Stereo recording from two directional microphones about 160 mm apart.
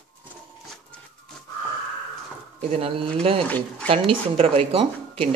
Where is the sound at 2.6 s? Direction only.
40° right (ahead or behind).